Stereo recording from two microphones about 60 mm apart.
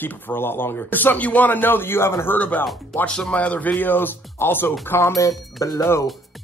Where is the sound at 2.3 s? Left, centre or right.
Left.